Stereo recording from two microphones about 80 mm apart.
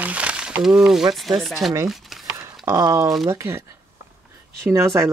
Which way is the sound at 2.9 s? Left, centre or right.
Right.